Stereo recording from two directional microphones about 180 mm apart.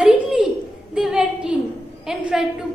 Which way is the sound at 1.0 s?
5° right (ahead or behind).